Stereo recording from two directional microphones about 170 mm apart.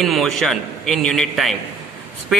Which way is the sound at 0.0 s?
Centre (ahead or behind).